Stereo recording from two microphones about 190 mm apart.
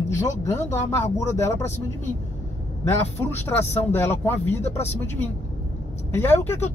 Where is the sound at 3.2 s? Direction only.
10° left (ahead or behind).